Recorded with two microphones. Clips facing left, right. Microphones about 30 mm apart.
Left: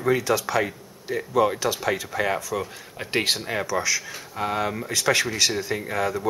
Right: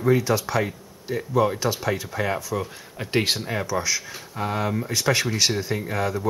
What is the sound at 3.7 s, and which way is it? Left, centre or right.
Speech, left.